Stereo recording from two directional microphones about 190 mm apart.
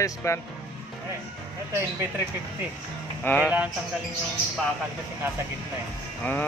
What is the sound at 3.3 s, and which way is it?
Mantra, 10° left (ahead or behind).